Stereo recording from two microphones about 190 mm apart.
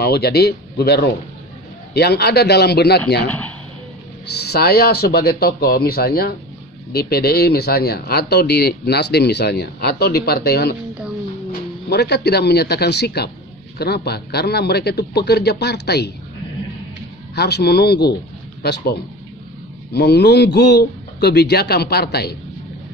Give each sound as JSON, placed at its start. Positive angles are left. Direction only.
{"t": 0.0, "sound": "speech", "side_deg": 60}
{"t": 3.3, "sound": "speech", "side_deg": 10}
{"t": 4.3, "sound": "speech", "side_deg": 60}
{"t": 11.9, "sound": "speech", "side_deg": 60}
{"t": 17.4, "sound": "speech", "side_deg": 60}